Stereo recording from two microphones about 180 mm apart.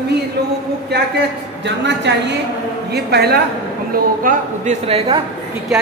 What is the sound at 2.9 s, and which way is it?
Speech, 65° right (ahead or behind).